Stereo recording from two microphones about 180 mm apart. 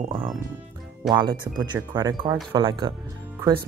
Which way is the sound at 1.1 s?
25° right (ahead or behind).